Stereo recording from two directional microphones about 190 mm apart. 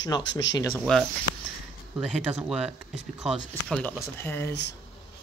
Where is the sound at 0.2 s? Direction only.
70° left (ahead or behind).